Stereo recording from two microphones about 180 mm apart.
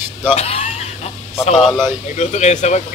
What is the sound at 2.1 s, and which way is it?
Speech, 40° left (ahead or behind).